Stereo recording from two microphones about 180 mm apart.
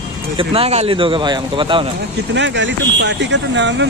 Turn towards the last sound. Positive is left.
turn(degrees=-90)